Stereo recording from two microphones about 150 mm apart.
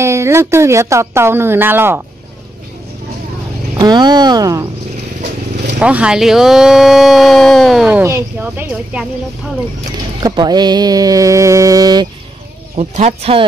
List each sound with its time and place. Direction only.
0.0 s speech: 20° right (ahead or behind)
3.7 s a sound: 25° right (ahead or behind)
5.8 s speech: 5° right (ahead or behind)
8.0 s speech: 20° right (ahead or behind)
10.2 s a sound: 30° right (ahead or behind)
12.7 s speech: 45° right (ahead or behind)